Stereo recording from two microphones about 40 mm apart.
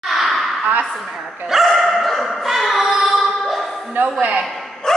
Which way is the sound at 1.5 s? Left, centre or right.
Centre.